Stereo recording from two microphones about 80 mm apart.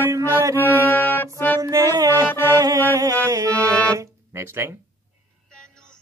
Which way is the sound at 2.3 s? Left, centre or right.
Left.